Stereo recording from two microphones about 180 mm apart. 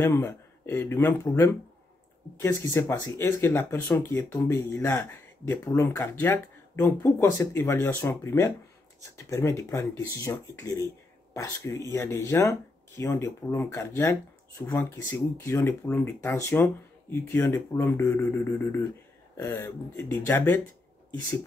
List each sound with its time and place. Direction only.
0.0 s speech: 15° left (ahead or behind)